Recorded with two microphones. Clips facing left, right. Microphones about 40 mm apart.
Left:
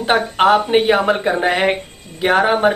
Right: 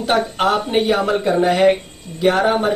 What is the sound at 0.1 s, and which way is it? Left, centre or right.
Speech, left.